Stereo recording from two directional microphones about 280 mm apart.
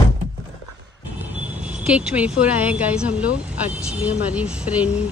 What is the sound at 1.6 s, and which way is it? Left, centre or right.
Speech, centre.